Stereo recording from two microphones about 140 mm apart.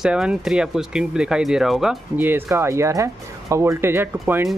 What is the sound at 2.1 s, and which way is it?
Speech, 15° right (ahead or behind).